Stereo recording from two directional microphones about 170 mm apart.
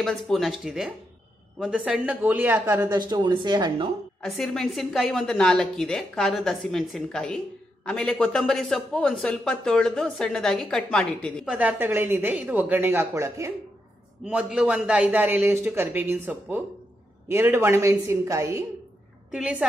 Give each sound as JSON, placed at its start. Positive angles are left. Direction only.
{"t": 0.0, "sound": "a man's voice", "side_deg": 0}
{"t": 3.0, "sound": "speech", "side_deg": -25}
{"t": 4.2, "sound": "a man's voice", "side_deg": 0}
{"t": 11.4, "sound": "a man's voice", "side_deg": -10}